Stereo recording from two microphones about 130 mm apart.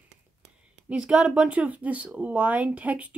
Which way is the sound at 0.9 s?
5° right (ahead or behind).